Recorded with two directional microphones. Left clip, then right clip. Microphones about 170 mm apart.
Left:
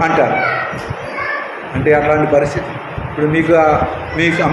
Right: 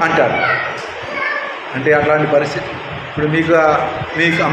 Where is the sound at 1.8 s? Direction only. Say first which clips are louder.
Left 1 dB; 45° left (ahead or behind).